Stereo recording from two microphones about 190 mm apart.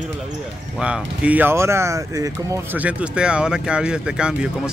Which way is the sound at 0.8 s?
5° right (ahead or behind).